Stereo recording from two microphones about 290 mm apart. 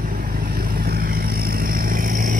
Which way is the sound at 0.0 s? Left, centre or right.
Right.